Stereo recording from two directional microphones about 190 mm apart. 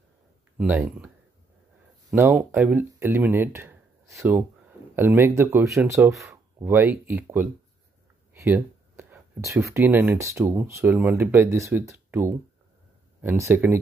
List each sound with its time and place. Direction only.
0.6 s speech: 10° right (ahead or behind)
2.1 s speech: 10° right (ahead or behind)